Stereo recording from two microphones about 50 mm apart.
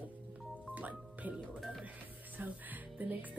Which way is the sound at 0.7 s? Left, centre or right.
Right.